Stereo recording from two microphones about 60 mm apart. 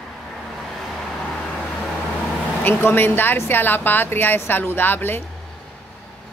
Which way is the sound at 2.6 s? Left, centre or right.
Left.